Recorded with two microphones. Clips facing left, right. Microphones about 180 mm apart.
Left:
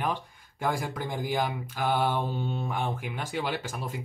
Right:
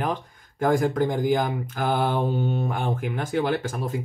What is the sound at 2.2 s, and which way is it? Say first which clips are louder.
Speech: right 7 dB; 40° right (ahead or behind).